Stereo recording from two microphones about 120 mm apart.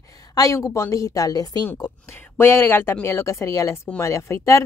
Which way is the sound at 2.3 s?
20° left (ahead or behind).